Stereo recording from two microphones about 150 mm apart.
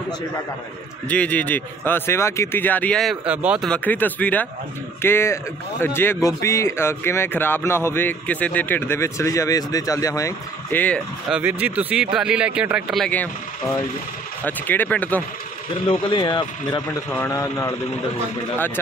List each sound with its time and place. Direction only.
1.0 s speech: 10° left (ahead or behind)
3.3 s speech: 10° right (ahead or behind)
3.6 s speech: 10° left (ahead or behind)
10.7 s speech: 10° left (ahead or behind)
11.2 s speech: 10° right (ahead or behind); by 15.2 s 10° left (ahead or behind)
15.9 s speech: 30° left (ahead or behind)
17.1 s speech: 20° left (ahead or behind)